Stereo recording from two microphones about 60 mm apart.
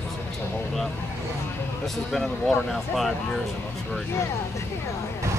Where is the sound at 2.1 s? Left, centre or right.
Centre.